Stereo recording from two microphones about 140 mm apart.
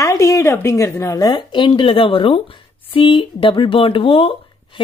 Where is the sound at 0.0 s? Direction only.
20° left (ahead or behind).